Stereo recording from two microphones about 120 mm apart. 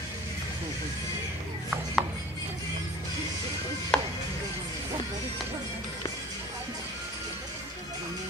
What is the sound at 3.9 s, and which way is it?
Chopping, 5° left (ahead or behind).